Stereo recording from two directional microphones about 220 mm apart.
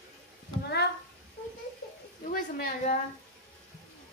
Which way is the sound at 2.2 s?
45° left (ahead or behind).